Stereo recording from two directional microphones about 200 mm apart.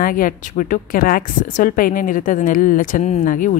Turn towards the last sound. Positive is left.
turn(degrees=40)  # may be behind; listen again after turning